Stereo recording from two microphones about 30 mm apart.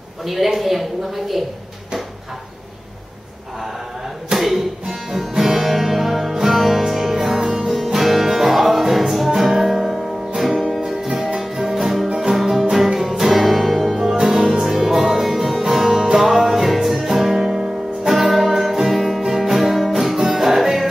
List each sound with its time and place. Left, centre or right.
0.2 s a woman's voice: centre
4.4 s music: centre
10.8 s music: centre
13.3 s music: centre
14.2 s music: centre